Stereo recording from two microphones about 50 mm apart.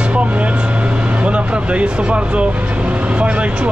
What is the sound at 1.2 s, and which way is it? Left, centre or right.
Speech, right.